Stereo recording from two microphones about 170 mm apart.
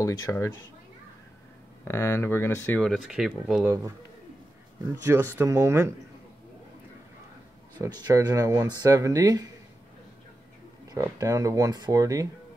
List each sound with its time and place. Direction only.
0.0 s speech: 20° left (ahead or behind)
1.9 s speech: 15° left (ahead or behind); by 3.6 s centre (ahead or behind)
3.6 s speech: 15° right (ahead or behind)
5.0 s speech: 15° right (ahead or behind)
7.8 s speech: 20° right (ahead or behind)
11.0 s speech: 20° right (ahead or behind)